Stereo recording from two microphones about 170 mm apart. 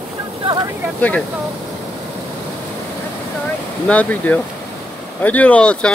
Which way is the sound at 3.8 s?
10° left (ahead or behind).